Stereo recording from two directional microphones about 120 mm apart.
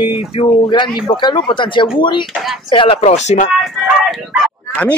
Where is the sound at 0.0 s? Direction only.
45° left (ahead or behind); by 3.4 s 70° left (ahead or behind).